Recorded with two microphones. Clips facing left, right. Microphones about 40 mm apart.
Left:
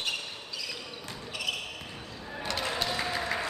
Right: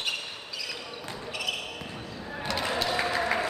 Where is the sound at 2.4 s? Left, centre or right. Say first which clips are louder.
Right 3 dB; centre.